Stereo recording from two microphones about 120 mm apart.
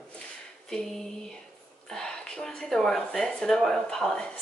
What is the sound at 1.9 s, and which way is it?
Speech, 5° left (ahead or behind).